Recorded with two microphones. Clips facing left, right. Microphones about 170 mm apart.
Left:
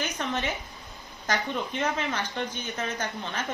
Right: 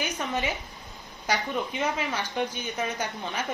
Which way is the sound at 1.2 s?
10° right (ahead or behind).